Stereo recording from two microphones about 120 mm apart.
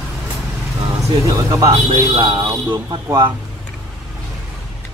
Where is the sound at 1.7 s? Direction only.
50° right (ahead or behind).